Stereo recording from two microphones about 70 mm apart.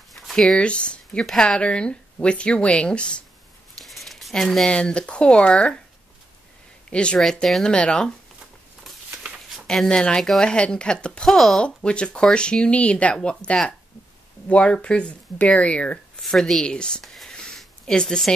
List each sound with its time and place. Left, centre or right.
0.1 s a sound: centre
0.6 s speech: centre
1.6 s speech: centre
3.8 s a sound: centre
4.6 s speech: centre
6.9 s speech: centre
7.2 s speech: centre
9.8 s speech: centre
16.2 s speech: centre
17.0 s a sound: centre